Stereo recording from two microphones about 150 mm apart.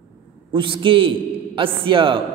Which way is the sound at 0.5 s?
35° right (ahead or behind).